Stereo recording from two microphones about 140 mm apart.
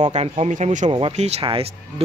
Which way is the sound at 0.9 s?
45° right (ahead or behind).